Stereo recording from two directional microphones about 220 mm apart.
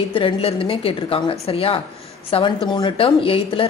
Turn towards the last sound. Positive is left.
turn(degrees=25)  # may be behind; listen again after turning